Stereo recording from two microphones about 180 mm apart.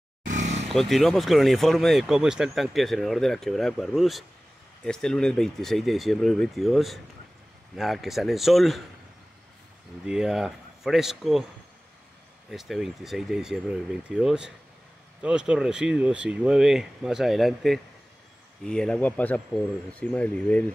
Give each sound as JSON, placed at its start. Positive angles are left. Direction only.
{"t": 0.2, "sound": "vehicle", "side_deg": -45}
{"t": 0.7, "sound": "speech", "side_deg": 0}
{"t": 10.0, "sound": "speech", "side_deg": -5}
{"t": 12.4, "sound": "speech", "side_deg": 0}